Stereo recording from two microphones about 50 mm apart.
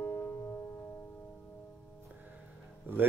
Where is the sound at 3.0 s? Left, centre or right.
Right.